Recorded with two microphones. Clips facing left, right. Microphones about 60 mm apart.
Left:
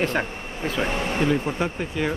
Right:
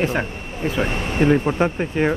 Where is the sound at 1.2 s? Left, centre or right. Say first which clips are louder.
Right 8 dB; right.